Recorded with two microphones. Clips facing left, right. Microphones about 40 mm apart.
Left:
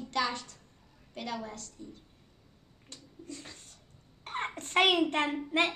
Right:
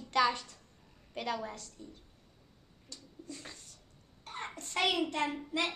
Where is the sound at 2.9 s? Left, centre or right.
Left.